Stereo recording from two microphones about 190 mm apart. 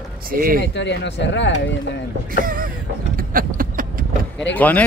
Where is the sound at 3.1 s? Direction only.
50° right (ahead or behind).